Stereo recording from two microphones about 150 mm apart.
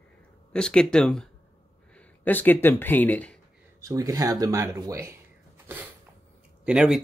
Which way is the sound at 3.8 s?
20° right (ahead or behind).